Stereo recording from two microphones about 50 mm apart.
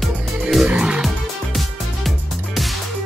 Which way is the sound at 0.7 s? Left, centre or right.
Right.